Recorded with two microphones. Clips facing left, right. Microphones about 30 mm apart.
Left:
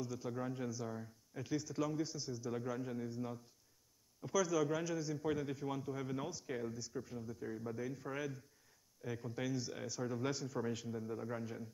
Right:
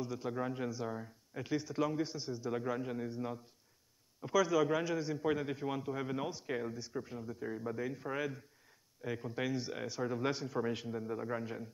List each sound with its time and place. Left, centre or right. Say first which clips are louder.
0.0 s a man's voice: right 4 dB; right